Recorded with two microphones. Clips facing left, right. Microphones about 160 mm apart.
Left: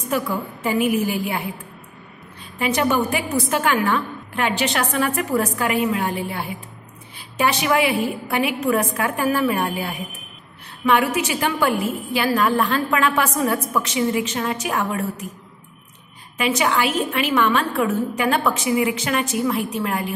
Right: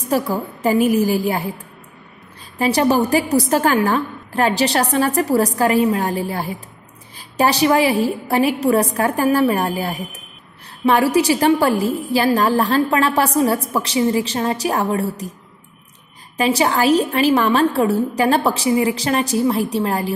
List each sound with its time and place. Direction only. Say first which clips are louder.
0.1 s a woman's voice: right 4 dB; 35° right (ahead or behind)
2.6 s a woman's voice: right 4 dB; 35° right (ahead or behind)
16.3 s a woman's voice: right 3 dB; 35° right (ahead or behind)